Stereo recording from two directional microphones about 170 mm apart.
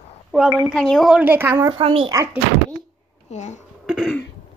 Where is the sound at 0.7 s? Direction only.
5° left (ahead or behind); by 1.7 s 15° right (ahead or behind).